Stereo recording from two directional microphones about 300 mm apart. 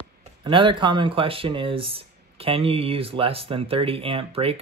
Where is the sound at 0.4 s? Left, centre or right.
Centre.